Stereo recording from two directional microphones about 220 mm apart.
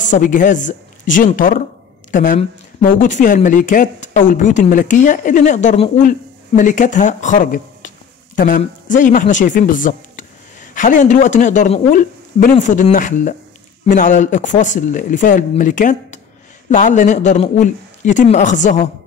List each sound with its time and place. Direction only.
0.0 s speech: 35° left (ahead or behind)